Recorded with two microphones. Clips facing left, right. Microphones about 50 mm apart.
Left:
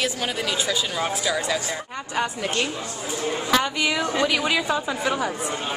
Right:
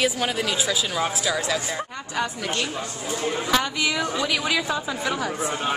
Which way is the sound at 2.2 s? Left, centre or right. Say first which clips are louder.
Left 1 dB; centre.